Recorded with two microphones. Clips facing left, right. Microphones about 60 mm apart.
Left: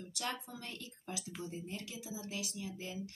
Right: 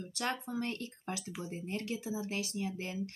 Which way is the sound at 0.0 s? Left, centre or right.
Right.